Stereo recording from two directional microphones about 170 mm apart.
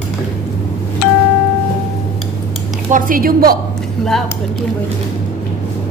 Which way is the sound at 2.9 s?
55° right (ahead or behind).